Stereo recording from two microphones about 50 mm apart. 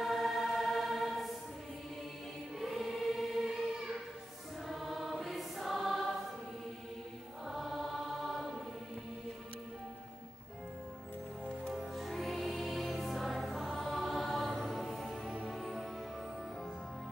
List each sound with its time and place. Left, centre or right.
0.0 s music: centre
2.6 s choir: centre
7.4 s music: centre
11.6 s music: centre
15.2 s music: centre
15.5 s music: centre